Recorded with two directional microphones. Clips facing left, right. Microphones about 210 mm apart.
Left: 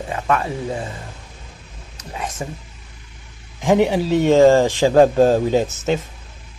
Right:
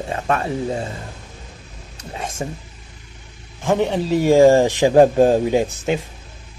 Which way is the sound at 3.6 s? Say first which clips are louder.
Left 3 dB; 15° left (ahead or behind).